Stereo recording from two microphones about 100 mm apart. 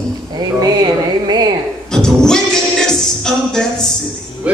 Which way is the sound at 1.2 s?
45° right (ahead or behind).